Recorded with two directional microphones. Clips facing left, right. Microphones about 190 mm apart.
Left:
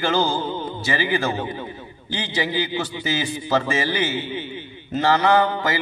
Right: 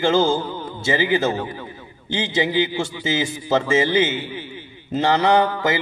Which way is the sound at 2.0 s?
25° right (ahead or behind).